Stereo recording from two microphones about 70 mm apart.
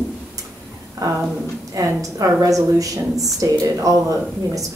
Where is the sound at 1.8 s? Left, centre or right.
Right.